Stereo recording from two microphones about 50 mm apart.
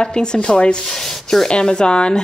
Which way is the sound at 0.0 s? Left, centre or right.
Centre.